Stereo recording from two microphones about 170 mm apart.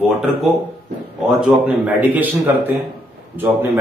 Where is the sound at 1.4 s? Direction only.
5° right (ahead or behind).